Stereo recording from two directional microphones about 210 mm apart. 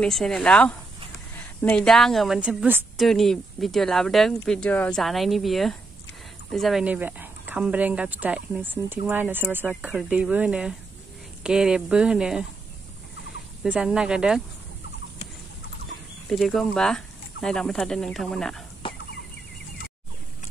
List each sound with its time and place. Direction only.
0.0 s a woman's voice: centre (ahead or behind)
13.6 s a woman's voice: 5° right (ahead or behind)
16.3 s a woman's voice: centre (ahead or behind)
18.8 s fowl: 25° left (ahead or behind)